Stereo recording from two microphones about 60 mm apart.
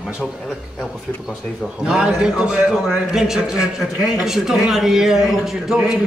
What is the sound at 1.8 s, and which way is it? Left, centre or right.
A man's voice, centre.